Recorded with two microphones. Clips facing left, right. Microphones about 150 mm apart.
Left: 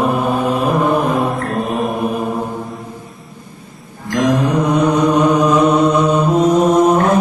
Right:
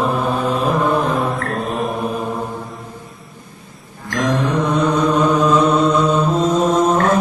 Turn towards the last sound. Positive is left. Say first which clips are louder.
# left 3 dB
turn(degrees=15)  # may be behind; listen again after turning